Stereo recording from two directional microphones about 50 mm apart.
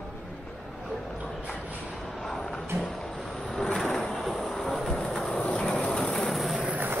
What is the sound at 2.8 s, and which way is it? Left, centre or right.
Vehicle, centre.